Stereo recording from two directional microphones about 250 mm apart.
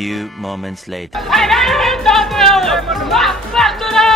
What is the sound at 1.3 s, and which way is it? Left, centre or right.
Speech, centre.